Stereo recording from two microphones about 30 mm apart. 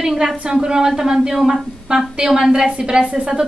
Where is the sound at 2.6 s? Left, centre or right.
Right.